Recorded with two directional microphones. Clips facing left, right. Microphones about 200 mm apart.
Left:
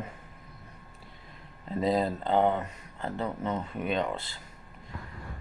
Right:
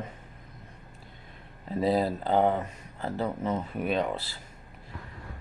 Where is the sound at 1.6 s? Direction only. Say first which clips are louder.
Right 1 dB; 5° right (ahead or behind).